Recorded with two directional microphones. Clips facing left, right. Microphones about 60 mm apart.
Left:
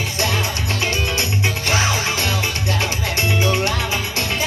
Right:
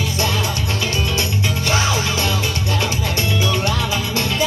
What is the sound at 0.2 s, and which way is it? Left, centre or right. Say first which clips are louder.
Music: left 1 dB; left.